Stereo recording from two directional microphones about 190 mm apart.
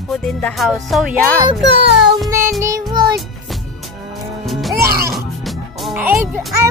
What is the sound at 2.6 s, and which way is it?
Music, 20° right (ahead or behind).